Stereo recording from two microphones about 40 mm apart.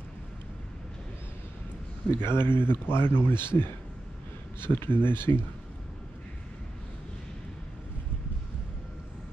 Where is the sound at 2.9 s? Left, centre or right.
Left.